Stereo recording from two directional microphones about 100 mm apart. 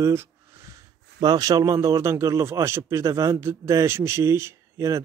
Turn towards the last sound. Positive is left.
turn(degrees=-30)  # may be behind; listen again after turning